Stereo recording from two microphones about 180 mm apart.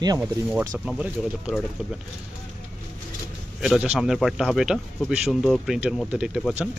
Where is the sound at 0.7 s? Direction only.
5° right (ahead or behind).